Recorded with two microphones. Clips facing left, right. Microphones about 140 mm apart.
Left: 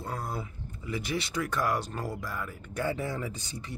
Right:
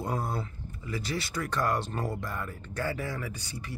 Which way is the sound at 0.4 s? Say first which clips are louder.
Right 1 dB; 15° left (ahead or behind).